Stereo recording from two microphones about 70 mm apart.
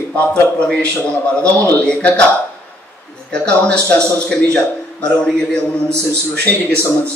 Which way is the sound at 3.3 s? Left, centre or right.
Centre.